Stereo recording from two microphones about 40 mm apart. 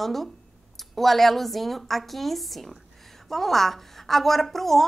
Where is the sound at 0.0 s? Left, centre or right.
Centre.